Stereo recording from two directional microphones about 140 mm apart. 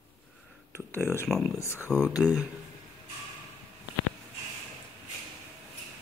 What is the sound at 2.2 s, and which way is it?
Speech, 5° left (ahead or behind).